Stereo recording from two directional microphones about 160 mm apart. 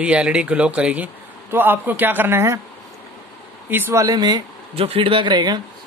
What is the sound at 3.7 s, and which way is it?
Speech, 15° right (ahead or behind).